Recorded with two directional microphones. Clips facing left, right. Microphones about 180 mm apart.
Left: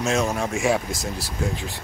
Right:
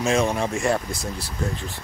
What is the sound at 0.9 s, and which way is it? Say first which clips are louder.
Speech: left 1 dB; 90° left.